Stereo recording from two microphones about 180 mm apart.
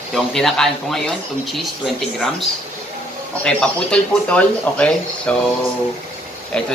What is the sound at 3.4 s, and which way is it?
Speech, 5° left (ahead or behind).